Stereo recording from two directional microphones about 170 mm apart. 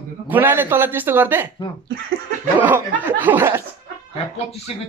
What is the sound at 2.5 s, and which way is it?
A man's voice, 10° right (ahead or behind).